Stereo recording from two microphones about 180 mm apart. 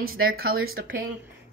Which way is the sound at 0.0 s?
55° right (ahead or behind).